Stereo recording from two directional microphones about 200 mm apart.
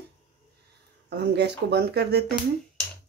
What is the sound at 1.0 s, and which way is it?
Speech, 55° right (ahead or behind).